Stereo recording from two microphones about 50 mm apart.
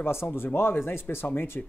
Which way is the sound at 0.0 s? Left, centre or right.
Left.